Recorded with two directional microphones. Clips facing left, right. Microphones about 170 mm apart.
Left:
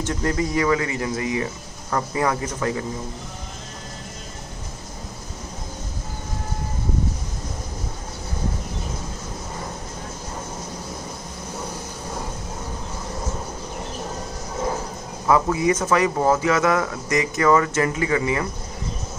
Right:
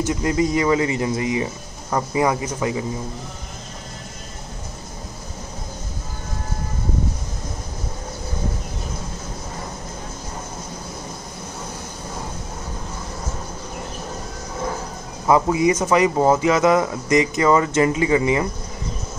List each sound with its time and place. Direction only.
0.0 s speech: 10° right (ahead or behind)
15.2 s speech: 20° right (ahead or behind)